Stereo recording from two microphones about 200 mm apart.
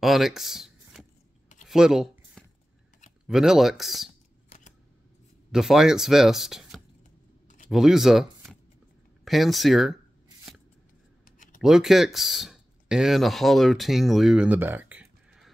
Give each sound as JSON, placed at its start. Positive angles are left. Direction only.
{"t": 0.0, "sound": "speech", "side_deg": 0}
{"t": 1.7, "sound": "a sound", "side_deg": 0}
{"t": 3.3, "sound": "speech", "side_deg": 0}
{"t": 4.5, "sound": "scissors", "side_deg": 30}
{"t": 5.5, "sound": "speech", "side_deg": 0}
{"t": 7.4, "sound": "a sound", "side_deg": 40}
{"t": 7.7, "sound": "speech", "side_deg": 0}
{"t": 11.2, "sound": "a sound", "side_deg": 40}
{"t": 11.6, "sound": "speech", "side_deg": 0}